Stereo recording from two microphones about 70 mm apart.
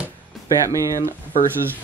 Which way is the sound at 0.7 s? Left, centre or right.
Right.